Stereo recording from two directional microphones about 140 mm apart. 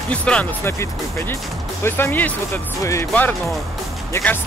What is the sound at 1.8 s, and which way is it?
Speech, 15° left (ahead or behind).